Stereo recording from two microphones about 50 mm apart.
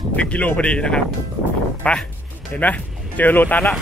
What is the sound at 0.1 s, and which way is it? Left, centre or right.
Speech, left.